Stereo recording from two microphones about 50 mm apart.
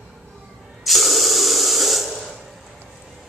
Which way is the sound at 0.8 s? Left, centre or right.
Centre.